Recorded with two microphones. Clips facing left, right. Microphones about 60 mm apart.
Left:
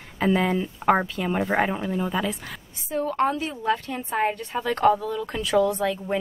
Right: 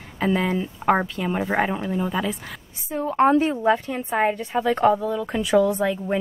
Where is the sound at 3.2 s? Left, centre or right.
Right.